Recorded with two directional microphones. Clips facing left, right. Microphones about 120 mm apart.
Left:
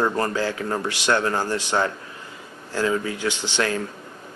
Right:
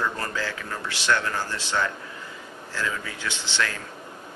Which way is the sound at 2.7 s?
40° left (ahead or behind).